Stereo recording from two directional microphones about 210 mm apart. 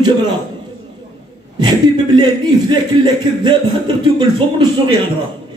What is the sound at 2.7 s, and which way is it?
A man's voice, 20° right (ahead or behind).